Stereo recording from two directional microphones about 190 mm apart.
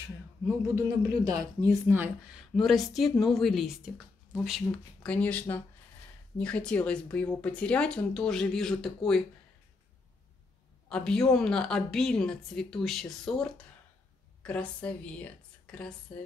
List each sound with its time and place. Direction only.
0.6 s a woman's voice: 20° right (ahead or behind)
2.5 s a woman's voice: centre (ahead or behind)
10.9 s a woman's voice: 5° left (ahead or behind)